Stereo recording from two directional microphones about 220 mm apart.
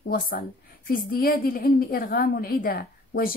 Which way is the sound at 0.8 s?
40° left (ahead or behind).